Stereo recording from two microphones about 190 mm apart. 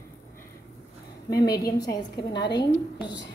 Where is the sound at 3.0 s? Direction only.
65° left (ahead or behind).